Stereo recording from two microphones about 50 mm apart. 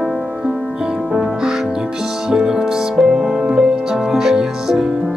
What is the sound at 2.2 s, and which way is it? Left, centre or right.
Music, centre.